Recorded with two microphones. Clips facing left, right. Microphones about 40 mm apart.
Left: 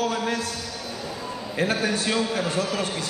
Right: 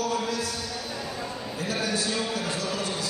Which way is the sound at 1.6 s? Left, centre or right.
Left.